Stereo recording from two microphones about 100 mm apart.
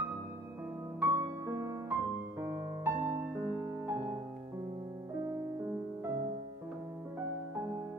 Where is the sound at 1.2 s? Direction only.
30° right (ahead or behind).